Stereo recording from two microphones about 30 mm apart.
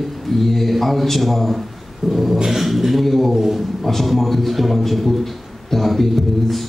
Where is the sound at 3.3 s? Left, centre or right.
Centre.